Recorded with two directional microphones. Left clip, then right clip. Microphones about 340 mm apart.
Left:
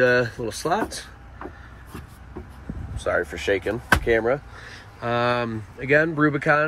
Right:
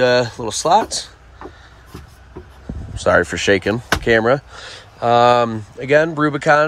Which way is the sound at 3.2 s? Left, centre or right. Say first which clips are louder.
Right 8 dB; right.